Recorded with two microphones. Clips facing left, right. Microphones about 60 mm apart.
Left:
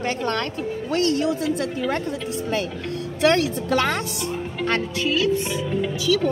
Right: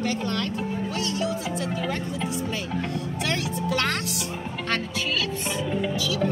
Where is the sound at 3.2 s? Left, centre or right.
Left.